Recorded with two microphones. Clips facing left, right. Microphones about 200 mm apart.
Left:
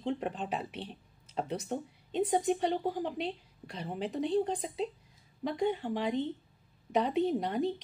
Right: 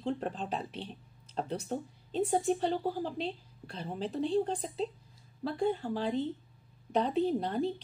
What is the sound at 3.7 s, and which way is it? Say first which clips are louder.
Speech: even; 10° left (ahead or behind).